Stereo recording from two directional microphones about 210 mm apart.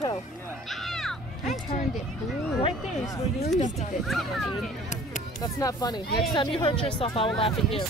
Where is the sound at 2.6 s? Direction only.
15° left (ahead or behind).